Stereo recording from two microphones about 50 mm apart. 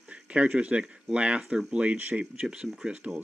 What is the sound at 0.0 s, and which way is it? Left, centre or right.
A man's voice, right.